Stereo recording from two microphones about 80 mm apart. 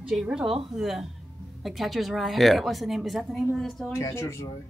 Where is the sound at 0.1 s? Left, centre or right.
Centre.